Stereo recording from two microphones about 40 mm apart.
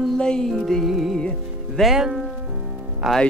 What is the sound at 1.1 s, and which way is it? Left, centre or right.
Music, left.